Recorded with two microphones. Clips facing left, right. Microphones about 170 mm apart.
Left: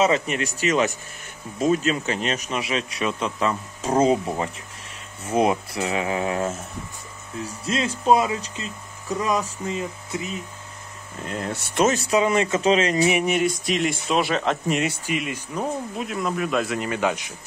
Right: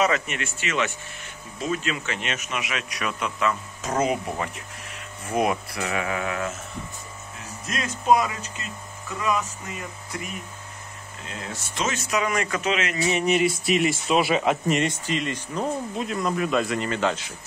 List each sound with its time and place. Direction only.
0.0 s speech: 30° left (ahead or behind)
11.2 s speech: 60° left (ahead or behind)
11.8 s speech: 35° left (ahead or behind)
13.2 s speech: centre (ahead or behind)